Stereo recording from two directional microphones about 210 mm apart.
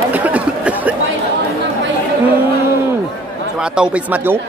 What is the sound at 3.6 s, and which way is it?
Speech, 5° right (ahead or behind).